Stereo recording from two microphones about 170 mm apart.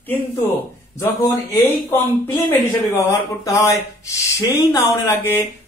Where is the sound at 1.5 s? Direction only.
15° left (ahead or behind).